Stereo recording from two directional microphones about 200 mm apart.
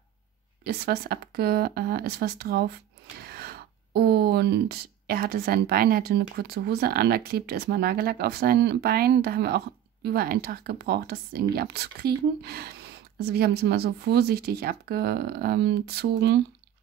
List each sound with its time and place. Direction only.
0.7 s speech: 50° right (ahead or behind)